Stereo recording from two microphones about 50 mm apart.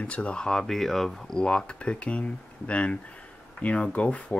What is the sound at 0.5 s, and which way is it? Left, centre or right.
Speech, centre.